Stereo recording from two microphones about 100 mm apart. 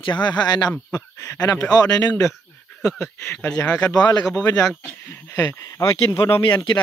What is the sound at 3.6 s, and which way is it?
Speech, 40° left (ahead or behind).